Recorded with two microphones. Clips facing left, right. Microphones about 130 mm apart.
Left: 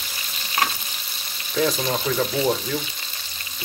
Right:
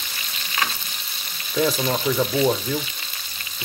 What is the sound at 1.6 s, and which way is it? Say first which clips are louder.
Speech: right 1 dB; 5° right (ahead or behind).